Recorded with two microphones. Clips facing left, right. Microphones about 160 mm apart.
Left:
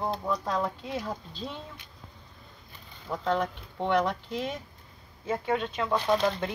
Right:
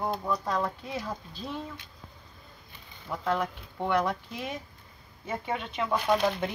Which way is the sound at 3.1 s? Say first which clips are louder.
Left 1 dB; 5° right (ahead or behind).